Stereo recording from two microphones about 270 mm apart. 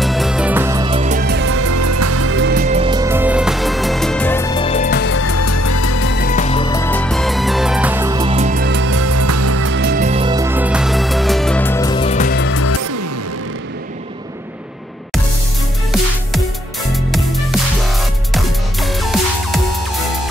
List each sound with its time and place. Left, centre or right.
0.0 s music: centre
0.8 s music: right
1.6 s music: right
2.5 s music: right
2.8 s music: centre; by 5.2 s left
5.2 s music: left
5.9 s music: left; by 8.9 s right
8.9 s music: right
9.8 s music: right; by 12.4 s left
12.4 s music: left
16.9 s music: centre